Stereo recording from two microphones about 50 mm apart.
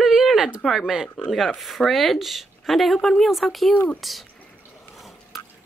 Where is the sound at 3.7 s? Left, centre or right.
Left.